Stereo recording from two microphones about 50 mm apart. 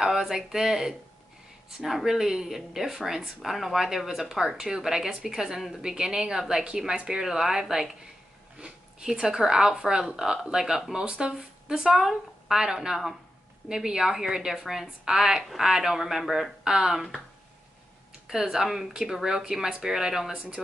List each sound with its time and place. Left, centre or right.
0.0 s speech: centre
18.2 s speech: centre